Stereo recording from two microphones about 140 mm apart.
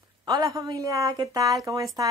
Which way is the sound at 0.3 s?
25° right (ahead or behind).